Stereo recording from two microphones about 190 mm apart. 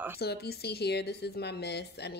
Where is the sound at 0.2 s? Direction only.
55° left (ahead or behind).